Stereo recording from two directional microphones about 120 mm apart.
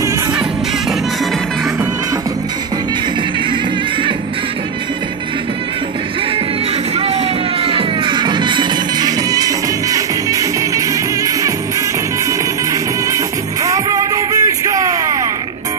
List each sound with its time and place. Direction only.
7.0 s music: 55° right (ahead or behind); by 11.5 s 25° right (ahead or behind)
13.1 s music: 30° right (ahead or behind)